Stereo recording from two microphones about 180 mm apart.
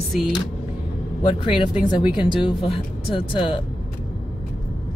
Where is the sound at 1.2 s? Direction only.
30° left (ahead or behind).